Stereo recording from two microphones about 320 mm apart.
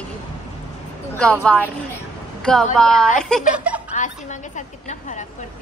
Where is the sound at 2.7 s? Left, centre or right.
Centre.